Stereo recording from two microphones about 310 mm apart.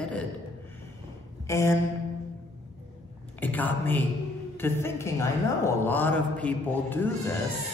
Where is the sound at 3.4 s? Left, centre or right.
Centre.